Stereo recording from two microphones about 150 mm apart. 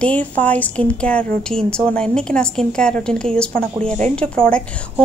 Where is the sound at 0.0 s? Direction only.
10° left (ahead or behind).